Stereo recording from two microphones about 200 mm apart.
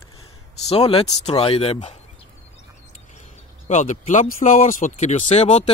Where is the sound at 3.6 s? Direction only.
35° left (ahead or behind).